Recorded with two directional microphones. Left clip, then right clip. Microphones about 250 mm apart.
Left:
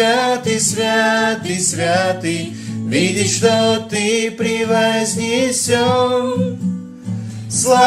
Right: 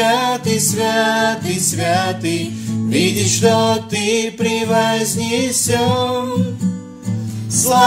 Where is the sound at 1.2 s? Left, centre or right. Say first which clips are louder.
Even; centre.